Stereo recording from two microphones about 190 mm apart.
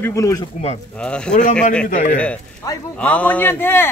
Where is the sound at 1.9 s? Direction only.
40° left (ahead or behind).